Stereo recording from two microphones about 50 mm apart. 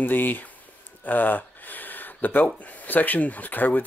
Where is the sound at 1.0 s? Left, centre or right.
Left.